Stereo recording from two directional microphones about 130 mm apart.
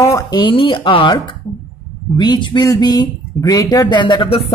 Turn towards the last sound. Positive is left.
turn(degrees=40)  # may be behind; listen again after turning